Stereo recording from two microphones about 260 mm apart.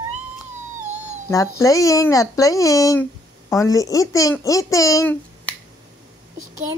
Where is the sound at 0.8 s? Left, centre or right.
Right.